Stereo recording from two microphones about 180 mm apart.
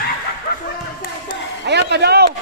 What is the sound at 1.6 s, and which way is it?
Speech, 70° right (ahead or behind).